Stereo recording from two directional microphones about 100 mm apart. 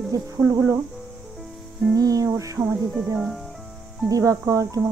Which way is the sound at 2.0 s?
35° right (ahead or behind).